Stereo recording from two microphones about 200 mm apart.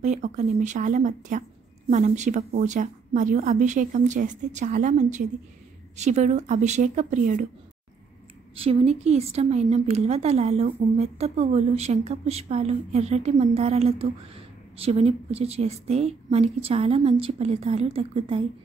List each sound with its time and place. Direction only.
0.0 s a woman's voice: 35° right (ahead or behind)
8.5 s a woman's voice: 30° right (ahead or behind)